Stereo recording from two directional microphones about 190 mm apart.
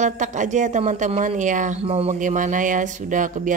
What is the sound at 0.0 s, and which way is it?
Speech, 40° right (ahead or behind).